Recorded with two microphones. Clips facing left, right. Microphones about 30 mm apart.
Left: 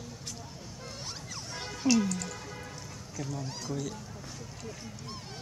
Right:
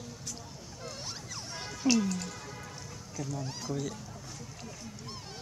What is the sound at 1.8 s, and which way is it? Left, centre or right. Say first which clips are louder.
Speech: left 1 dB; centre.